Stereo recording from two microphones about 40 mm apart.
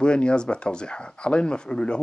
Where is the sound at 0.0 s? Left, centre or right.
Left.